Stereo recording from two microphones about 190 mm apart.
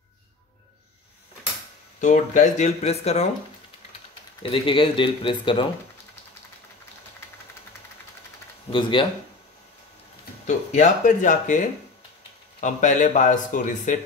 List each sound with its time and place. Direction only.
2.0 s speech: 40° left (ahead or behind)
4.4 s speech: 30° left (ahead or behind)
8.6 s speech: 25° left (ahead or behind)
10.4 s speech: 40° left (ahead or behind)